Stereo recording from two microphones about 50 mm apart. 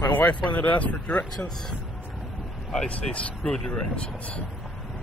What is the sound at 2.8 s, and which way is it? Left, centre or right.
Speech, left.